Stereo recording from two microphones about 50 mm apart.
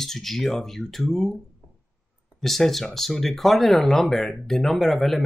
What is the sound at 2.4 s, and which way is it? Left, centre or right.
Speech, centre.